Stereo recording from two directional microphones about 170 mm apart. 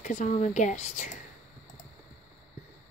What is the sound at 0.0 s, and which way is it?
Speech, 45° left (ahead or behind).